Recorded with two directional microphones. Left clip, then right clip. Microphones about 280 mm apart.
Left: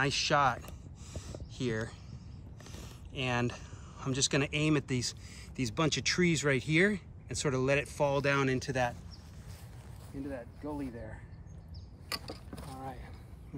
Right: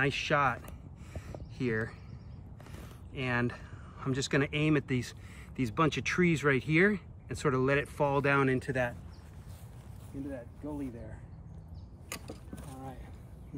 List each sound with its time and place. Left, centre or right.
0.0 s a sound: centre
1.6 s speech: centre
10.2 s speech: left
12.5 s vehicle: left